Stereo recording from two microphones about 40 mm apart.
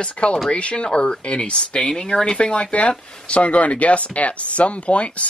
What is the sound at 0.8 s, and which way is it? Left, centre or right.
Speech, centre.